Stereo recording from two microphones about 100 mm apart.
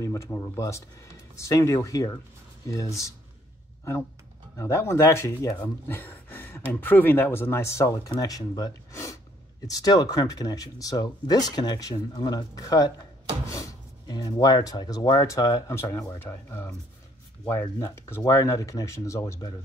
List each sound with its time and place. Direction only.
0.0 s speech: 30° left (ahead or behind)
4.6 s speech: 30° left (ahead or behind)
5.9 s speech: 20° left (ahead or behind); by 12.9 s 35° left (ahead or behind)
13.5 s drawer open or close: 35° left (ahead or behind)
14.0 s speech: 45° left (ahead or behind)